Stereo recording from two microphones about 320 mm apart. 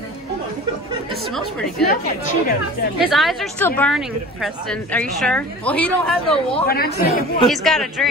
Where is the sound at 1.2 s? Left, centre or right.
Centre.